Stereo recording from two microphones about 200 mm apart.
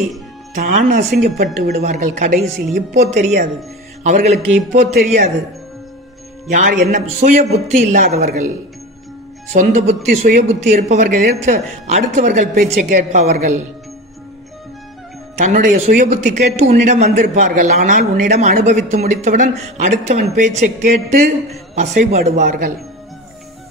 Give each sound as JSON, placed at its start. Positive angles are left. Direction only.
{"t": 0.6, "sound": "a man's voice", "side_deg": -40}
{"t": 6.5, "sound": "a man's voice", "side_deg": -40}
{"t": 9.5, "sound": "a man's voice", "side_deg": -35}
{"t": 15.3, "sound": "a man's voice", "side_deg": -35}